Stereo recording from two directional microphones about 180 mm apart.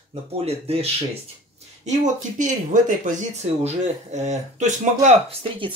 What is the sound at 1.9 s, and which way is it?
Speech, 45° right (ahead or behind).